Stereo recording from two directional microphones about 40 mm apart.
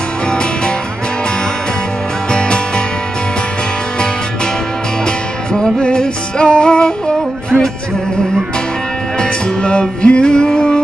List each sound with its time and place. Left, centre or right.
2.3 s music: left
5.0 s music: centre
9.2 s music: left